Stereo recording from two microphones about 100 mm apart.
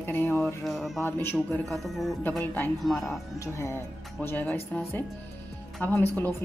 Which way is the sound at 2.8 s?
5° left (ahead or behind).